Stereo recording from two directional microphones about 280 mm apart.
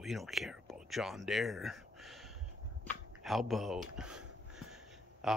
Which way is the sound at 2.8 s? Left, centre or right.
Centre.